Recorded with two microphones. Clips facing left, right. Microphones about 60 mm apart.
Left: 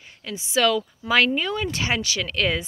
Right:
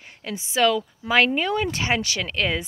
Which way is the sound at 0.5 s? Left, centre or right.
Centre.